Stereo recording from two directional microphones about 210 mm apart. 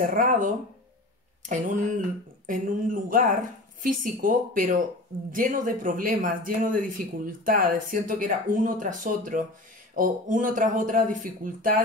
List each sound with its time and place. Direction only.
0.0 s speech: 40° right (ahead or behind)